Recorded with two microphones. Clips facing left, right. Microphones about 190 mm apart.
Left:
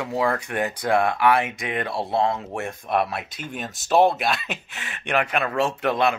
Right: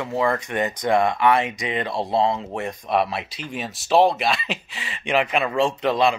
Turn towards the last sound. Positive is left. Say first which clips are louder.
# right 2 dB
turn(degrees=5)  # may be behind; listen again after turning